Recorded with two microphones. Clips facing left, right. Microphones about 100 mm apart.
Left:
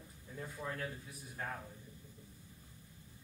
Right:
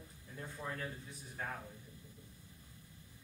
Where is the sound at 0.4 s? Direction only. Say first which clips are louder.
Left 1 dB; centre (ahead or behind).